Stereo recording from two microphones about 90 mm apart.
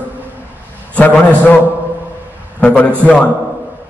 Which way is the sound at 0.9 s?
15° left (ahead or behind).